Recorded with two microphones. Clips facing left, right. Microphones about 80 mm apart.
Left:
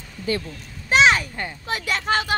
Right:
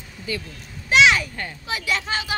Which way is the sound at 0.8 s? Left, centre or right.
Left.